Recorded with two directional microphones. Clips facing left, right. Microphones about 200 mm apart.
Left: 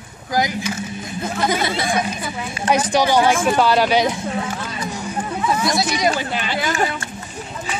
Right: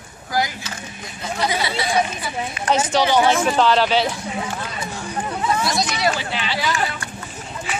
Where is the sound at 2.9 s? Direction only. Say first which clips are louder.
Even; 10° left (ahead or behind).